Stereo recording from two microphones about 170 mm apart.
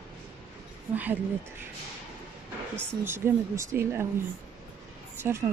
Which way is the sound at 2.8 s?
15° right (ahead or behind).